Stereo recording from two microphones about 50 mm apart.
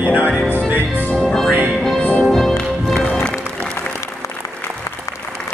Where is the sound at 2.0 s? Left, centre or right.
Left.